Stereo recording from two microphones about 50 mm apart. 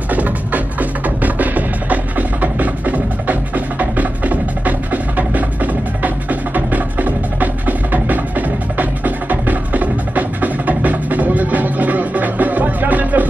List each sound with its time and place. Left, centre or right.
0.1 s music: right